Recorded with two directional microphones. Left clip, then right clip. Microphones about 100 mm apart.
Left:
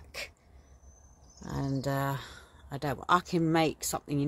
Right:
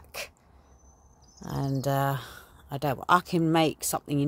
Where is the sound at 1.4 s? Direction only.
25° right (ahead or behind).